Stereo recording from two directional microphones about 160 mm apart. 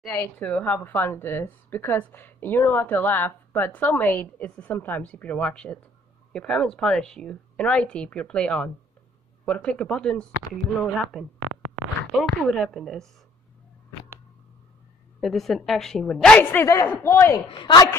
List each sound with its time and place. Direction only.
0.1 s a woman's voice: 10° left (ahead or behind)
15.1 s a woman's voice: centre (ahead or behind); by 17.4 s 15° left (ahead or behind)
17.5 s a woman's voice: 30° left (ahead or behind)